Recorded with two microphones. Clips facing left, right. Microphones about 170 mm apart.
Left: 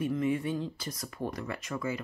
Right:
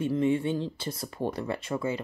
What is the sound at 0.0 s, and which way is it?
Speech, 25° right (ahead or behind).